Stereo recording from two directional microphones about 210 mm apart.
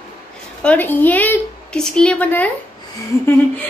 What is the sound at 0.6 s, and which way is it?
A woman's voice, 10° left (ahead or behind).